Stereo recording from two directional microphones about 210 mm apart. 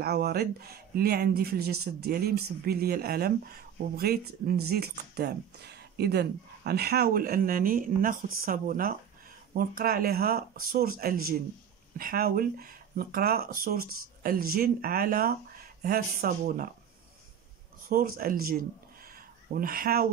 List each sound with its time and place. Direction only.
0.0 s speech: 50° right (ahead or behind)
17.8 s speech: 45° right (ahead or behind)